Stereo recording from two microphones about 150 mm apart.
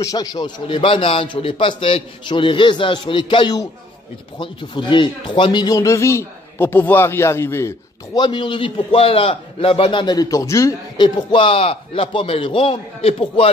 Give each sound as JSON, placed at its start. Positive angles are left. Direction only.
{"t": 0.0, "sound": "a man's voice", "side_deg": 25}
{"t": 8.2, "sound": "a man's voice", "side_deg": 35}